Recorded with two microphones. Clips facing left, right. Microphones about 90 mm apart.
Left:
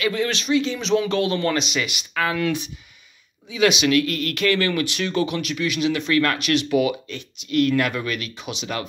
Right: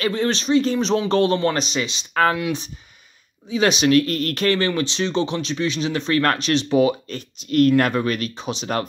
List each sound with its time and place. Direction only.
0.0 s speech: 35° right (ahead or behind)
3.4 s speech: 35° right (ahead or behind)